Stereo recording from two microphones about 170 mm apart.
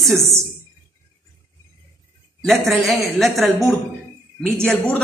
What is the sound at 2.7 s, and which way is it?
Speech, centre (ahead or behind).